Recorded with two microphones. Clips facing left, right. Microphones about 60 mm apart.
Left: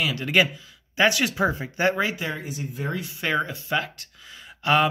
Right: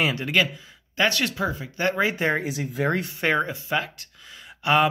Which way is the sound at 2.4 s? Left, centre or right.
Right.